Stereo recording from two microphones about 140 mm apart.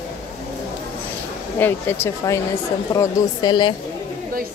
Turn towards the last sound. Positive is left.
turn(degrees=30)  # may be behind; listen again after turning